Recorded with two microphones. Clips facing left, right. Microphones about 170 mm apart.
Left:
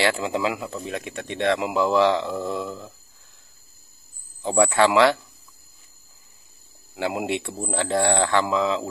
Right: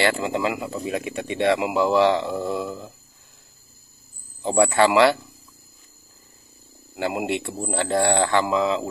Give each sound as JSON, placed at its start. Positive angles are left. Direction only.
{"t": 0.0, "sound": "speech", "side_deg": 0}
{"t": 4.4, "sound": "speech", "side_deg": 0}
{"t": 7.0, "sound": "speech", "side_deg": 0}